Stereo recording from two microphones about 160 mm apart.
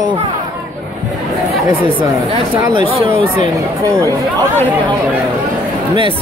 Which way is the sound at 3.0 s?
20° right (ahead or behind).